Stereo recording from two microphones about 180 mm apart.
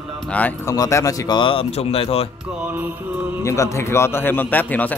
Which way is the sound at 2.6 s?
10° right (ahead or behind).